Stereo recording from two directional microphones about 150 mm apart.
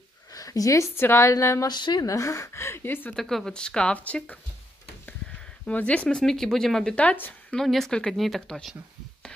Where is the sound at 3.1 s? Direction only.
5° left (ahead or behind).